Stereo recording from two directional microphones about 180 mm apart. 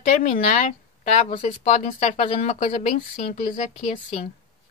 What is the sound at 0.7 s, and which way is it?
Speech, 45° left (ahead or behind).